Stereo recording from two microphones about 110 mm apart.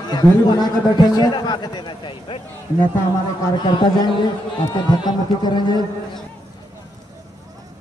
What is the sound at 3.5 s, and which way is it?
A man's voice, 40° left (ahead or behind).